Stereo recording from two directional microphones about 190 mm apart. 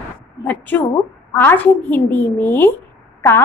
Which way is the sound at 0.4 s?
10° left (ahead or behind).